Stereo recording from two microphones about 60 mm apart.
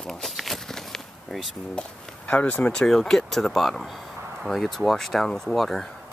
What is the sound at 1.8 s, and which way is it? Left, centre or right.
Speech, centre.